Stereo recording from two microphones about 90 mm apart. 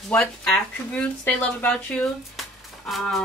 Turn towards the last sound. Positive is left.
turn(degrees=0)  # may be behind; listen again after turning